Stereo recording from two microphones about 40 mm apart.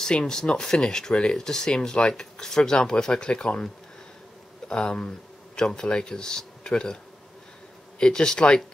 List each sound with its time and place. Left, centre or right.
0.0 s speech: centre
4.6 s speech: left
8.0 s speech: centre